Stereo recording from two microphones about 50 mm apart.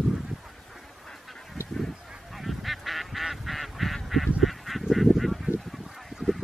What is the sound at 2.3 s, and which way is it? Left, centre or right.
Goose, centre.